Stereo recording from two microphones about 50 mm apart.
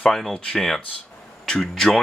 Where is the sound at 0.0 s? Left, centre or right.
Centre.